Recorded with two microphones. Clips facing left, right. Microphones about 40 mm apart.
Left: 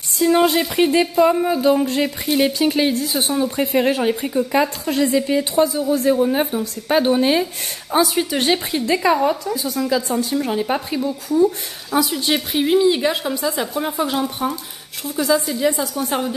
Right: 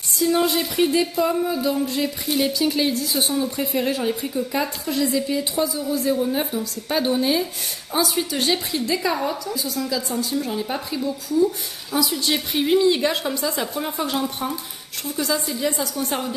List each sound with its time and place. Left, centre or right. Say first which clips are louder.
0.2 s speech: left 5 dB; left
3.5 s a woman's voice: left 5 dB; left
12.3 s a woman's voice: left 1 dB; centre